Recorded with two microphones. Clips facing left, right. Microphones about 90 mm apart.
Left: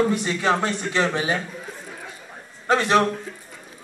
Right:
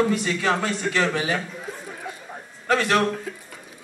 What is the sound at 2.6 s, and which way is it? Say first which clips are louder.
Speech: left 2 dB; 25° left (ahead or behind).